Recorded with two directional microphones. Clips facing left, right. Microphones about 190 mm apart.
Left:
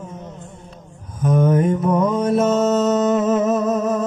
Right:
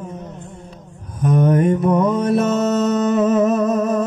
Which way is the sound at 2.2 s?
65° right (ahead or behind).